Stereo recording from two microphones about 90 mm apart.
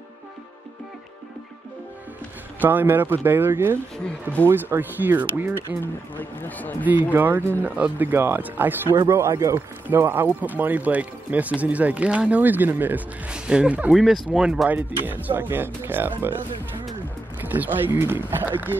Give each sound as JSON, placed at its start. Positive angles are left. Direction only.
{"t": 2.6, "sound": "speech", "side_deg": -20}
{"t": 6.1, "sound": "speech", "side_deg": 20}
{"t": 7.1, "sound": "speech", "side_deg": -20}
{"t": 9.1, "sound": "speech", "side_deg": -35}
{"t": 13.3, "sound": "speech", "side_deg": -10}
{"t": 13.9, "sound": "speech", "side_deg": -5}
{"t": 14.7, "sound": "speech", "side_deg": -20}